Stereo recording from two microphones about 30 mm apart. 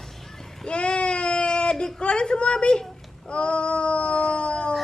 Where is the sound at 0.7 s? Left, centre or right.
Left.